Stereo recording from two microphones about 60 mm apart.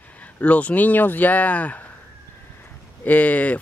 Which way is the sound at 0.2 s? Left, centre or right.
Left.